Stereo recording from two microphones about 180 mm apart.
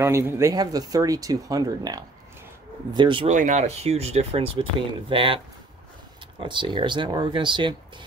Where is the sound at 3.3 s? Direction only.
45° right (ahead or behind).